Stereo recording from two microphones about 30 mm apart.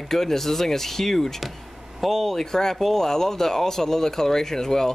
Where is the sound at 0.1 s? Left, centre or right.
Centre.